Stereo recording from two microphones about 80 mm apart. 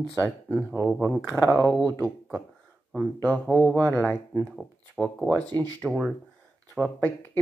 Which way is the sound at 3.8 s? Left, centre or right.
Left.